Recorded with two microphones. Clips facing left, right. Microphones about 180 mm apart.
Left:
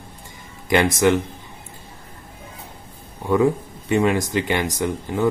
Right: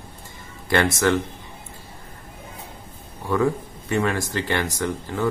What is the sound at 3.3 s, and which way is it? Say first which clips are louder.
Speech: left 4 dB; 20° left (ahead or behind).